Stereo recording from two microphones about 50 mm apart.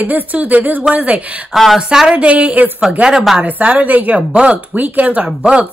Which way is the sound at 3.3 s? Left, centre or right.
Right.